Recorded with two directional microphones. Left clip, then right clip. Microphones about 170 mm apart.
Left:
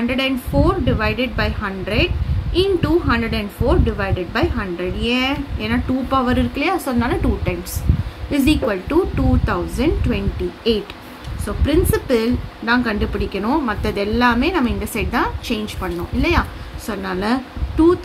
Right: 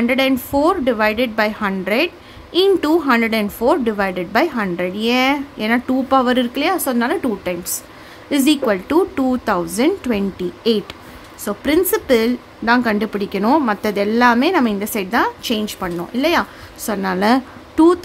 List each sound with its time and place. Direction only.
0.0 s a woman's voice: 45° right (ahead or behind)